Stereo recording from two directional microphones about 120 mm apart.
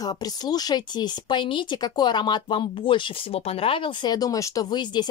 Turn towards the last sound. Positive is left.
turn(degrees=35)  # may be behind; listen again after turning